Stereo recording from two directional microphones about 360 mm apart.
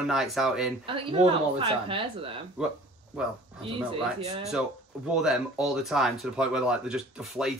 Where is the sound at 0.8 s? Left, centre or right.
Centre.